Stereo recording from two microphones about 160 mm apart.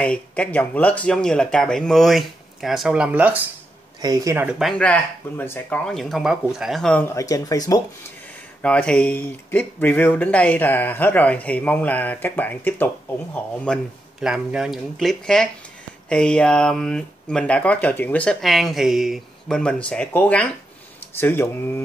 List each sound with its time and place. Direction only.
0.0 s speech: 10° left (ahead or behind); by 3.4 s 10° right (ahead or behind)
4.0 s speech: 20° right (ahead or behind)
4.5 s speech: centre (ahead or behind)
7.0 s speech: 20° left (ahead or behind)
8.6 s speech: 5° left (ahead or behind)
14.2 s speech: 5° right (ahead or behind); by 21.8 s 15° left (ahead or behind)